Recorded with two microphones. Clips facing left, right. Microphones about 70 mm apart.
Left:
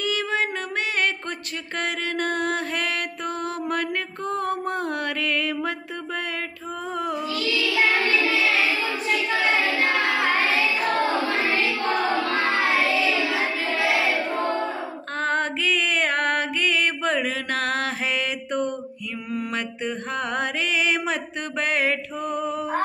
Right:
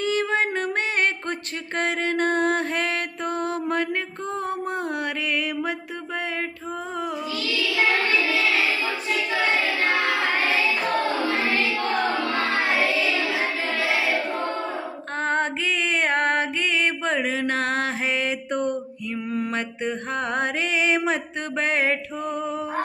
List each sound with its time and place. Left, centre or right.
0.0 s music: right
1.8 s mantra: right
15.1 s music: right
19.3 s mantra: right